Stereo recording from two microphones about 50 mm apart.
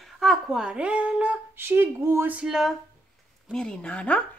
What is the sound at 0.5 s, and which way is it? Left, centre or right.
Speech, centre.